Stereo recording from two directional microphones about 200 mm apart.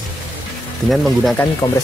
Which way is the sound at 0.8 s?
5° left (ahead or behind).